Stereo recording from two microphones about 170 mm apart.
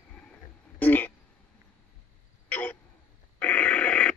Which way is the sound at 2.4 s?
10° left (ahead or behind).